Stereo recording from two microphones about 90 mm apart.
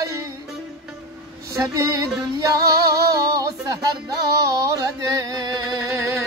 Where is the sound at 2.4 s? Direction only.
40° right (ahead or behind).